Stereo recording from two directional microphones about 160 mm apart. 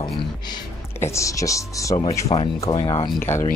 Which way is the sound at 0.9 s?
15° left (ahead or behind).